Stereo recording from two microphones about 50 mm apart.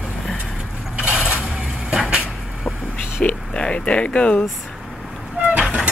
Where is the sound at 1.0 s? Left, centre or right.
Centre.